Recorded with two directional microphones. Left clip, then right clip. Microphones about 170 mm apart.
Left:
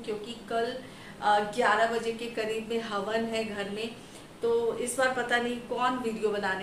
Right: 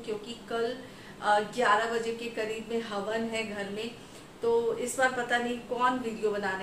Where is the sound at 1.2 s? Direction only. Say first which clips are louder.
Left 1 dB; 10° right (ahead or behind).